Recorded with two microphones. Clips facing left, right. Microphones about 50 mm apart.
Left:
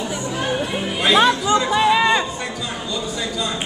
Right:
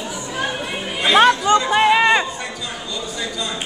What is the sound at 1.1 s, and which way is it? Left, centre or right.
Chatter, right.